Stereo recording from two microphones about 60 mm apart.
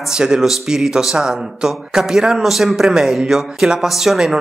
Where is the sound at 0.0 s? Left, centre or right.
Centre.